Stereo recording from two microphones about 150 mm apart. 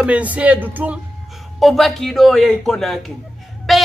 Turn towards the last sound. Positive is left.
turn(degrees=0)  # may be behind; listen again after turning